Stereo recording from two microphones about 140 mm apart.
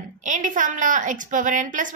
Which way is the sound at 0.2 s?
65° right (ahead or behind).